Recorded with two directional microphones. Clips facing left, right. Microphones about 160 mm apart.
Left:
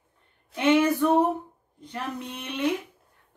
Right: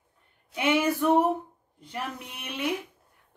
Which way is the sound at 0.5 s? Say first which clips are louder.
Left 4 dB; 10° right (ahead or behind).